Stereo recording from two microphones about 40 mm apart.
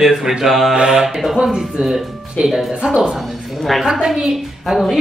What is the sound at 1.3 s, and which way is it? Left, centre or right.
Speech, centre.